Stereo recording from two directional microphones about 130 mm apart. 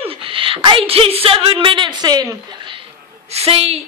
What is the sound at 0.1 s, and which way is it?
A woman's voice, 45° right (ahead or behind).